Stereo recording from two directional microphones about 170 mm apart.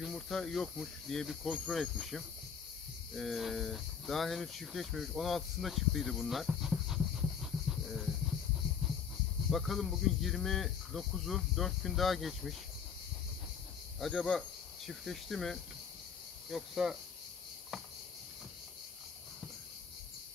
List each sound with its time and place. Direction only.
0.0 s speech: centre (ahead or behind)
8.8 s a sound: centre (ahead or behind)
9.5 s speech: centre (ahead or behind)
13.9 s cricket: centre (ahead or behind)
14.9 s speech: centre (ahead or behind)